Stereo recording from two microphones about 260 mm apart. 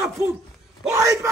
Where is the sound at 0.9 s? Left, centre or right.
Centre.